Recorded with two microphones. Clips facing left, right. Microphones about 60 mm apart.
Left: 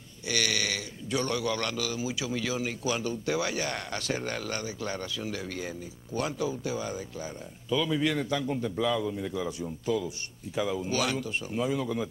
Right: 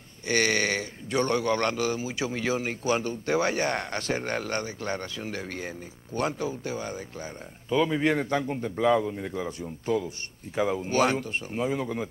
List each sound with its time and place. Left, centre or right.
0.3 s speech: right